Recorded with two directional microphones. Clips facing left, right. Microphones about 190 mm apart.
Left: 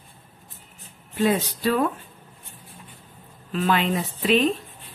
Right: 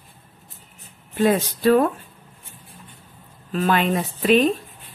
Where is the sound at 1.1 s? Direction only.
50° right (ahead or behind).